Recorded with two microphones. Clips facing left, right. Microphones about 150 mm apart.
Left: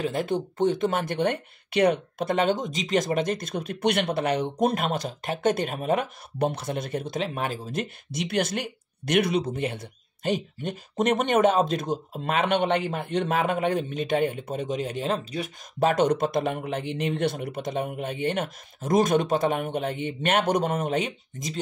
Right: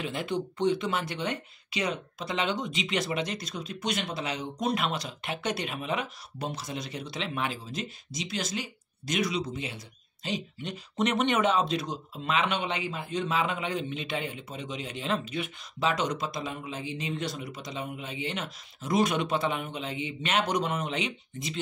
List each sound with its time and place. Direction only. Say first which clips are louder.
0.0 s speech: left 5 dB; 45° left (ahead or behind)